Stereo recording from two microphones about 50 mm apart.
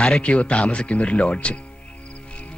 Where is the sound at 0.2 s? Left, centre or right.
Left.